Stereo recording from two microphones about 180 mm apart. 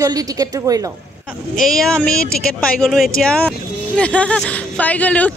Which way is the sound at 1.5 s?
5° left (ahead or behind).